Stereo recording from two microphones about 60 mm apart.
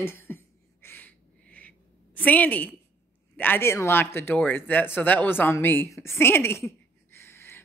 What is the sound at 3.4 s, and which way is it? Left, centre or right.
Speech, left.